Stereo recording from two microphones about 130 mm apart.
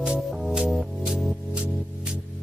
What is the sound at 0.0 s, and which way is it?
Music, 5° right (ahead or behind).